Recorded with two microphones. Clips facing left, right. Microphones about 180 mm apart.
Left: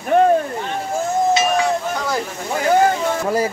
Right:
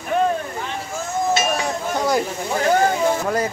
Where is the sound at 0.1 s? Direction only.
55° left (ahead or behind).